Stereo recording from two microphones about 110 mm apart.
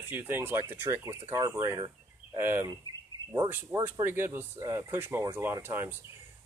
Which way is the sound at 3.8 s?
20° right (ahead or behind).